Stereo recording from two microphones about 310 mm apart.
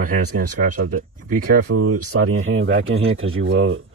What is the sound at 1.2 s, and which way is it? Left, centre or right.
Speech, right.